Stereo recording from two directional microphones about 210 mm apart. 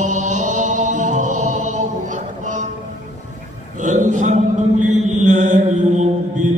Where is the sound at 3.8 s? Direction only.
35° right (ahead or behind).